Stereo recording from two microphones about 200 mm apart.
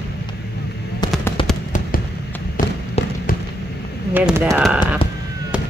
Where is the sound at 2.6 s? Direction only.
45° left (ahead or behind).